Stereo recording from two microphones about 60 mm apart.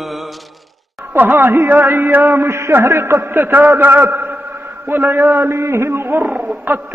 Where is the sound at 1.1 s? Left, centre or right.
Right.